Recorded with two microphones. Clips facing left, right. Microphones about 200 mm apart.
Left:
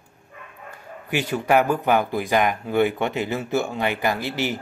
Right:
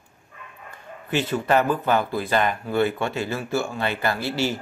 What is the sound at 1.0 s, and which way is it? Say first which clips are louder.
Speech: even; 10° left (ahead or behind).